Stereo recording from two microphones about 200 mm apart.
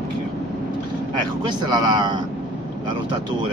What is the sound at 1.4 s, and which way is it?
Speech, 20° right (ahead or behind).